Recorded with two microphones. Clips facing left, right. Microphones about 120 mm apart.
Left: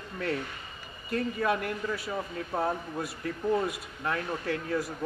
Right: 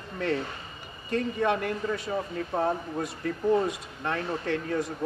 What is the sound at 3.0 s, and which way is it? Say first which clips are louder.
Speech: right 4 dB; 30° right (ahead or behind).